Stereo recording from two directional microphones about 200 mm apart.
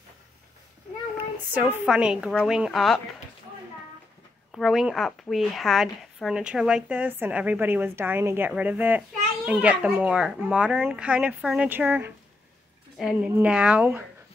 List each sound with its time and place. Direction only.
1.5 s a woman's voice: 10° right (ahead or behind)
4.5 s a woman's voice: centre (ahead or behind)